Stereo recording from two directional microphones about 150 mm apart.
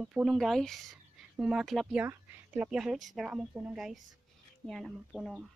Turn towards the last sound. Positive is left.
turn(degrees=0)  # may be behind; listen again after turning